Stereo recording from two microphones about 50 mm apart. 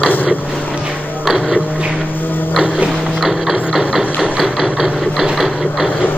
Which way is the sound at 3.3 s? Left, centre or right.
Centre.